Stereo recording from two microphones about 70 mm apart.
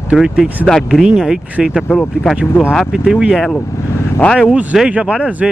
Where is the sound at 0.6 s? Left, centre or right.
Centre.